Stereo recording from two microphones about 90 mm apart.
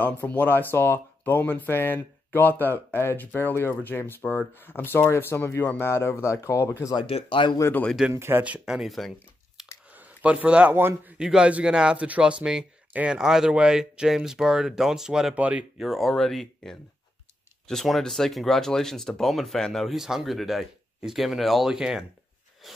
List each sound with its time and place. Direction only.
0.0 s speech: 20° left (ahead or behind)
7.1 s speech: 70° left (ahead or behind)
8.1 s speech: 25° right (ahead or behind); by 9.1 s centre (ahead or behind)
9.8 s a sound: 15° right (ahead or behind)
10.8 s speech: 25° right (ahead or behind)
11.1 s speech: 10° right (ahead or behind)
15.3 s speech: 15° right (ahead or behind)
15.8 s speech: centre (ahead or behind)
22.6 s a sound: centre (ahead or behind)